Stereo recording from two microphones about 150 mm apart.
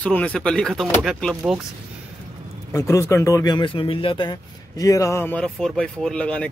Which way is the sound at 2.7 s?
20° left (ahead or behind).